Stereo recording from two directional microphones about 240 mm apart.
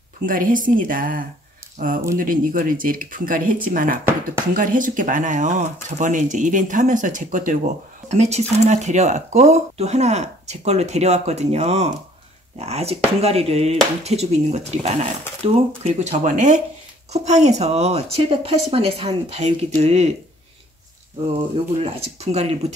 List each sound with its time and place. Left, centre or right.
0.3 s speech: right
21.8 s speech: right